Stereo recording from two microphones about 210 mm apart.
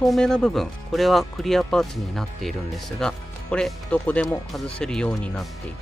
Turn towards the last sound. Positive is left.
turn(degrees=5)  # may be behind; listen again after turning